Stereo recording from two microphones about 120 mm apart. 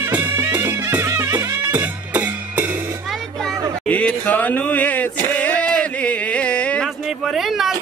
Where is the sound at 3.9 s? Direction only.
10° left (ahead or behind).